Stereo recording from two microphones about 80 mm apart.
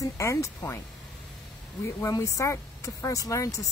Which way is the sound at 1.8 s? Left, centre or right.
Left.